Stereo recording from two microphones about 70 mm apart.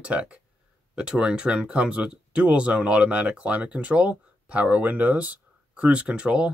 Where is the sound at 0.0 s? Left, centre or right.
Centre.